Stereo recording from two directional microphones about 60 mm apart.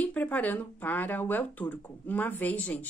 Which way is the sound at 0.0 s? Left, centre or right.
Left.